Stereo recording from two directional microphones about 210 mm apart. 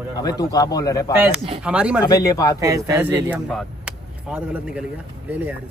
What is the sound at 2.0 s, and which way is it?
Speech, 15° left (ahead or behind).